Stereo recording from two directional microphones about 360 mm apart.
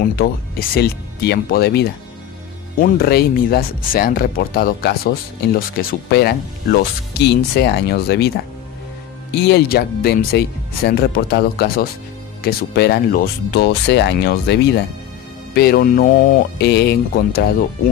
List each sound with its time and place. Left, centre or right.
0.1 s speech: left
9.3 s speech: left